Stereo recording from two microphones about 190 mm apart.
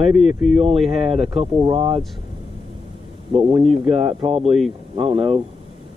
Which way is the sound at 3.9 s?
30° right (ahead or behind).